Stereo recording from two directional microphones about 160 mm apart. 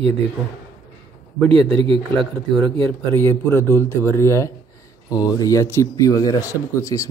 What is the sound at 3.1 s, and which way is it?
Speech, 15° left (ahead or behind).